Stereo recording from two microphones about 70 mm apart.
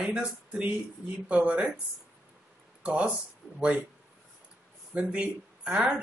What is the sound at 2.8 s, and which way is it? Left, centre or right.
Speech, centre.